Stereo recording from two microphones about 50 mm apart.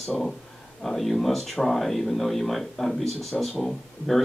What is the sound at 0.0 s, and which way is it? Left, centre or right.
Speech, centre.